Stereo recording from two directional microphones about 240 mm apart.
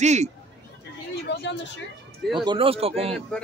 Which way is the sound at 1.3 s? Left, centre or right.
Left.